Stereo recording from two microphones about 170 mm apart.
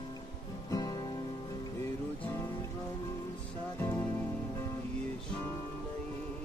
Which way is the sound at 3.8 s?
10° left (ahead or behind).